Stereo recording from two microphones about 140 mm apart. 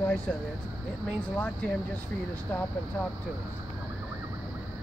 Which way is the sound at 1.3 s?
10° left (ahead or behind).